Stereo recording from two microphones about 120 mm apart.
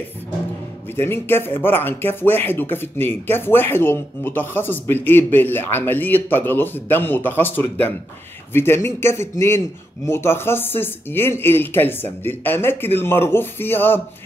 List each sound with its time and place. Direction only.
0.9 s a man's voice: 20° left (ahead or behind)